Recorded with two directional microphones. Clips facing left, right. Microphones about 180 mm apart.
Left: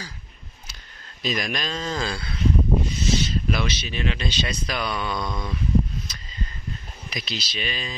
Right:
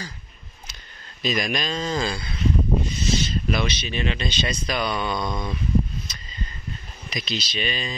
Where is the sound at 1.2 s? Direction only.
Centre (ahead or behind).